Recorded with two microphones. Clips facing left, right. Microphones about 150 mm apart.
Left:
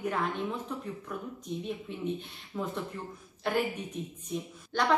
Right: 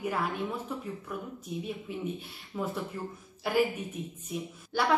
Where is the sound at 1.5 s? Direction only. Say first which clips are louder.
Even; 5° right (ahead or behind).